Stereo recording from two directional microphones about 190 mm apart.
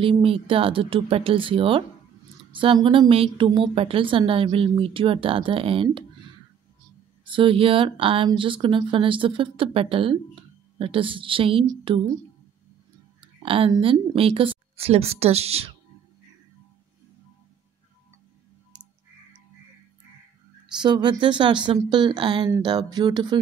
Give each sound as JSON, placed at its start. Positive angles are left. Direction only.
{"t": 0.0, "sound": "a woman's voice", "side_deg": -30}
{"t": 7.2, "sound": "a woman's voice", "side_deg": -25}
{"t": 13.2, "sound": "speech", "side_deg": -30}
{"t": 20.8, "sound": "a woman's voice", "side_deg": -25}